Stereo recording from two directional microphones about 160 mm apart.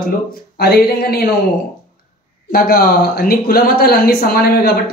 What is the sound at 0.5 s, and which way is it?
Speech, 75° left (ahead or behind).